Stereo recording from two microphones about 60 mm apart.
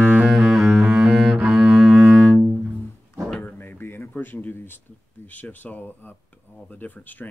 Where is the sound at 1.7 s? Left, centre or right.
Centre.